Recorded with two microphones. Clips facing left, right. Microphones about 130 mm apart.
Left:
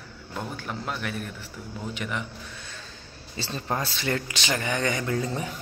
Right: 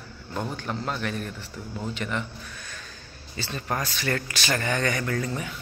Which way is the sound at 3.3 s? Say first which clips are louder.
Even; 30° left (ahead or behind).